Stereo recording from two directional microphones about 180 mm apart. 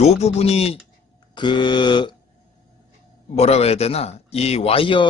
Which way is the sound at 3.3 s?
35° left (ahead or behind).